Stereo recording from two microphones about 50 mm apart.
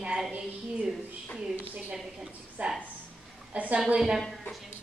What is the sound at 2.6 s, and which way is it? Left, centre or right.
A woman's voice, right.